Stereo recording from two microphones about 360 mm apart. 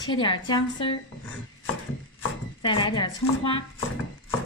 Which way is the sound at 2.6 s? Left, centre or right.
Centre.